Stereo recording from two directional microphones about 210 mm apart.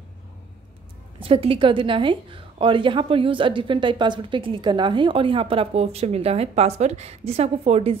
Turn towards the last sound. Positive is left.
turn(degrees=-25)  # may be behind; listen again after turning